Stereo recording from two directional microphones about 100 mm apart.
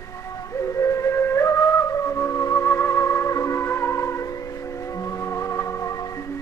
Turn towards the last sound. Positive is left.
turn(degrees=30)  # may be behind; listen again after turning